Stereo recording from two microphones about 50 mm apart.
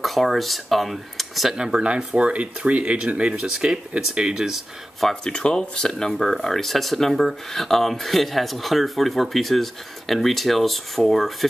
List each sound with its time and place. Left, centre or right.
0.0 s speech: centre
1.6 s speech: centre
5.2 s speech: centre